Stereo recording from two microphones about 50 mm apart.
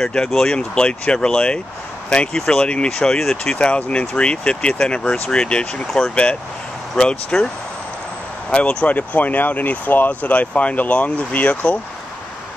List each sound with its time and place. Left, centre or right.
0.3 s speech: centre
0.6 s speech: left
3.2 s speech: centre
3.5 s speech: left
8.5 s speech: centre
8.8 s speech: left